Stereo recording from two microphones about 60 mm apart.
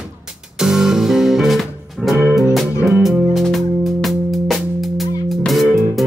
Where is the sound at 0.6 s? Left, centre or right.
Centre.